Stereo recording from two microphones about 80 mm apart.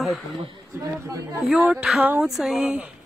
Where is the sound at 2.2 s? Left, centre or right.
Centre.